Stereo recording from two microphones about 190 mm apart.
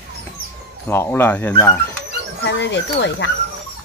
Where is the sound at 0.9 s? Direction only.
10° left (ahead or behind).